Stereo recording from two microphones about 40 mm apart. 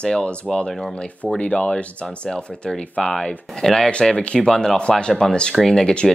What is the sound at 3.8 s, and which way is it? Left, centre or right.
Speech, left.